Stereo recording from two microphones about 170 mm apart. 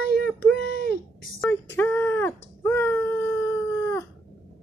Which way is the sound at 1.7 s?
10° left (ahead or behind).